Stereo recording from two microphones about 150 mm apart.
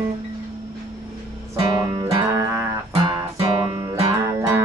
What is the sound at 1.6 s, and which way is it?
Music, 25° right (ahead or behind).